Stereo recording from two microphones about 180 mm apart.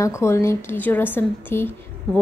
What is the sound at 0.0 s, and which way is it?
A woman's voice, 15° left (ahead or behind).